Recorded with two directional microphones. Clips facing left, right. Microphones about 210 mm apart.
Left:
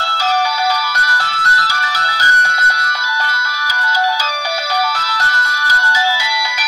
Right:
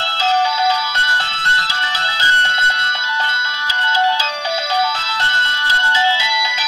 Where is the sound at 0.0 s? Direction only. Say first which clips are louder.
Even; 25° right (ahead or behind).